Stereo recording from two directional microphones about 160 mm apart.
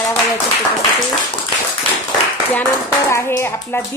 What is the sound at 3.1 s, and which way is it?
Speech, 15° left (ahead or behind).